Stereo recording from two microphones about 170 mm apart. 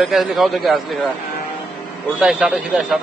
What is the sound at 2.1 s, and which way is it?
Speech, 5° right (ahead or behind).